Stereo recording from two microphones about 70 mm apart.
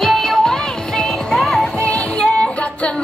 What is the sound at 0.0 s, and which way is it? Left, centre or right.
Music, centre.